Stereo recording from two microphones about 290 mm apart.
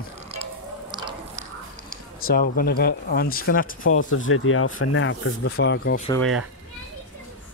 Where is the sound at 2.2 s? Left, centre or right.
Left.